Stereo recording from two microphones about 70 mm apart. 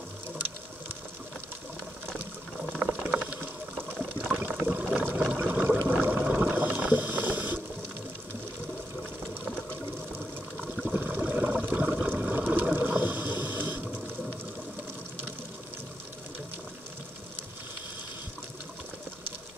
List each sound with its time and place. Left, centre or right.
2.8 s boiling: centre
4.3 s liquid: right
4.8 s water: right
5.3 s a sound: right
6.5 s boat: right
10.9 s water: right